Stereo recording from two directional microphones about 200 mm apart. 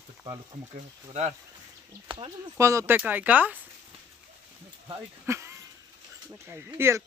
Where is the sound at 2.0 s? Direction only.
25° right (ahead or behind); by 3.6 s 10° right (ahead or behind).